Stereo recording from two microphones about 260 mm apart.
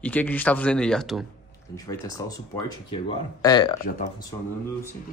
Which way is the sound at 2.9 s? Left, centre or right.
Centre.